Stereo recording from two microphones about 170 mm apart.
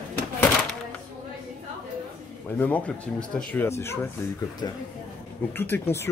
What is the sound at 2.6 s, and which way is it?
Speech, 10° left (ahead or behind).